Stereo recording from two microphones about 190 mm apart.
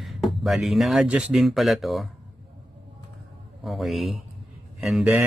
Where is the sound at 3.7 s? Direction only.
Centre (ahead or behind).